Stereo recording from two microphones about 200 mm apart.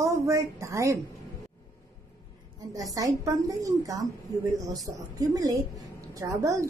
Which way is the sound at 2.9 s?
15° right (ahead or behind).